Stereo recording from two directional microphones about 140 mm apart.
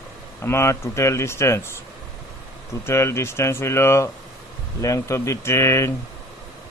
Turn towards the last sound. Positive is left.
turn(degrees=20)  # may be behind; listen again after turning